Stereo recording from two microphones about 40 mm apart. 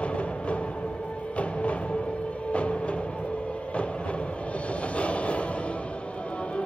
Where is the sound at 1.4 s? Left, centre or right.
Left.